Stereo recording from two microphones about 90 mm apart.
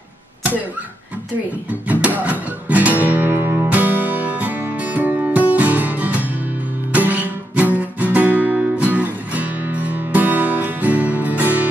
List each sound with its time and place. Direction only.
1.9 s music: 20° right (ahead or behind)